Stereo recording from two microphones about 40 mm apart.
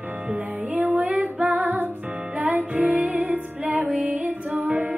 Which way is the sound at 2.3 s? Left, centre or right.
Right.